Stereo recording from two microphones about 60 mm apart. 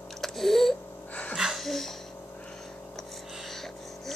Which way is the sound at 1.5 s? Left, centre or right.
Centre.